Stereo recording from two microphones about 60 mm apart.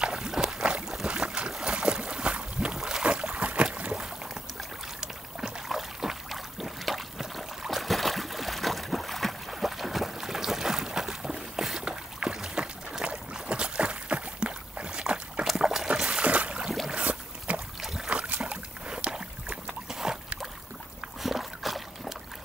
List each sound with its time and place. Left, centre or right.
0.0 s a sound: centre
1.0 s boat: centre
5.0 s boat: centre
17.7 s boat: centre
18.1 s boat: right; by 22.1 s centre